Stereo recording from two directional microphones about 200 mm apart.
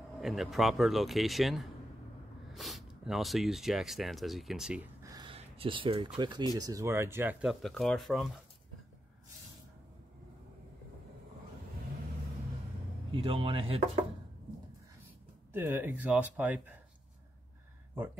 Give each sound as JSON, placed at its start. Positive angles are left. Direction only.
{"t": 0.2, "sound": "speech", "side_deg": 0}
{"t": 5.0, "sound": "a sound", "side_deg": -20}
{"t": 6.5, "sound": "speech", "side_deg": -20}
{"t": 13.1, "sound": "a man's voice", "side_deg": -25}
{"t": 15.5, "sound": "speech", "side_deg": -10}